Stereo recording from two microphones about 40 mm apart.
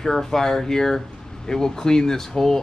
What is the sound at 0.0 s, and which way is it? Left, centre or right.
A man's voice, centre.